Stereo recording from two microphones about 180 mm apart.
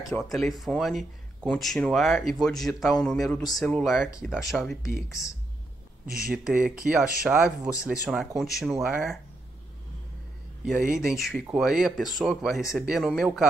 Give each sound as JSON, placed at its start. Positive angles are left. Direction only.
{"t": 0.1, "sound": "speech", "side_deg": 5}
{"t": 4.8, "sound": "speech", "side_deg": 15}
{"t": 6.2, "sound": "speech", "side_deg": -5}
{"t": 10.6, "sound": "speech", "side_deg": -5}